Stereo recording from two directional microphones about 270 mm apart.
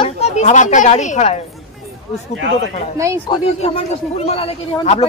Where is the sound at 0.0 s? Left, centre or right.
Left.